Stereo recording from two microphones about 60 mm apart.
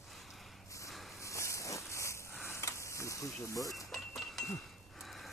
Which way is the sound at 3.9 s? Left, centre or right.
Centre.